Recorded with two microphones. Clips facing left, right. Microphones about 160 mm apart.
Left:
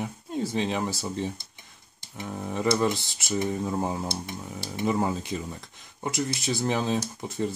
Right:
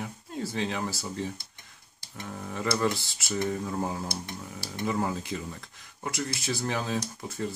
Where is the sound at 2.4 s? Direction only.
20° left (ahead or behind).